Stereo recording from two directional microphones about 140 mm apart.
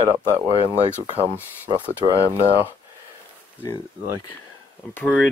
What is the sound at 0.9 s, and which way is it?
Speech, 15° left (ahead or behind).